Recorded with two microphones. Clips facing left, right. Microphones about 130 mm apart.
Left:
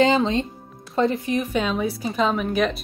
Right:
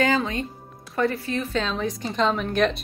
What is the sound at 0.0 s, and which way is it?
A woman's voice, 25° left (ahead or behind).